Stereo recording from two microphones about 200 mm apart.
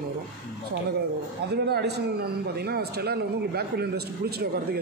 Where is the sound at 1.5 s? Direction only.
55° right (ahead or behind).